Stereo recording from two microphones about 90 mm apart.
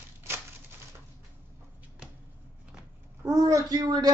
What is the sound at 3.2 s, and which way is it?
Speech, 40° right (ahead or behind).